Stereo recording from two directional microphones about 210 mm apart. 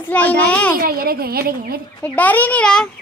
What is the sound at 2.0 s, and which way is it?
Speech, 5° left (ahead or behind).